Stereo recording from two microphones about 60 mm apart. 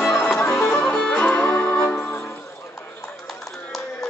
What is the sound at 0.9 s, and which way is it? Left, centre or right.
Music, left.